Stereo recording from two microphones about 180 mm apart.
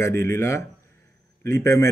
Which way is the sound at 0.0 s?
15° left (ahead or behind).